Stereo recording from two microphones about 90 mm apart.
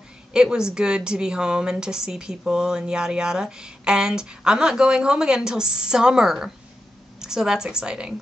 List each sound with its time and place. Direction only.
0.3 s a woman's voice: 10° right (ahead or behind)